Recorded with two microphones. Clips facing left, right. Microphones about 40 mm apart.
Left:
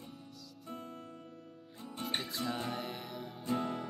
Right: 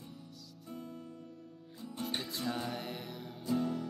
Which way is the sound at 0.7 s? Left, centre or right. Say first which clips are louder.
Even; left.